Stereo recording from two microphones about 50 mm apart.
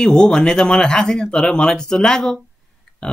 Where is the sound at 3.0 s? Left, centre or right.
Centre.